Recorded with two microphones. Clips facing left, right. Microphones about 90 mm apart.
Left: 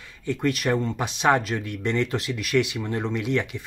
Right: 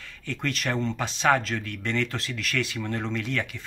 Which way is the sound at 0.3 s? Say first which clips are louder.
Left 6 dB; 15° left (ahead or behind).